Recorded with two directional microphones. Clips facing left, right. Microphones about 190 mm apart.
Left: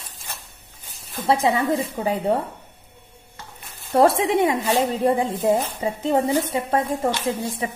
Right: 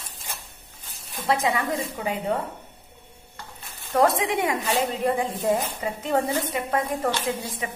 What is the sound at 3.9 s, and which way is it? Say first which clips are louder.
A woman's voice: left 4 dB; 30° left (ahead or behind).